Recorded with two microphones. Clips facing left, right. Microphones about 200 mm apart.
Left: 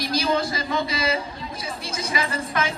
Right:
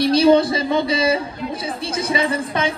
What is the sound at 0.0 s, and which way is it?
A man's voice, 30° right (ahead or behind).